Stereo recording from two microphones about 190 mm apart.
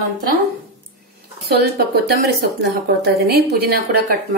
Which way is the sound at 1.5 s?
55° right (ahead or behind).